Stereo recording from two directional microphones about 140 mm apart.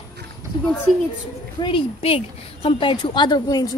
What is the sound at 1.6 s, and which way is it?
A woman's voice, 40° left (ahead or behind).